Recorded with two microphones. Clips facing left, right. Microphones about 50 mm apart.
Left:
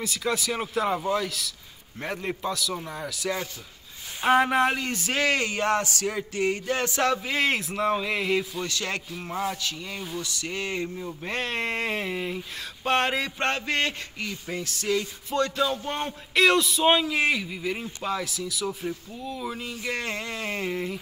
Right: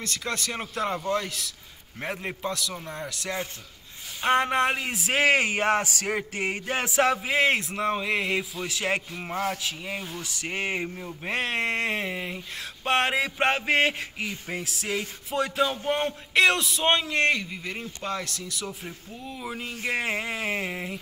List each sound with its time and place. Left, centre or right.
0.0 s speech: centre
7.0 s speech: centre
11.2 s speech: centre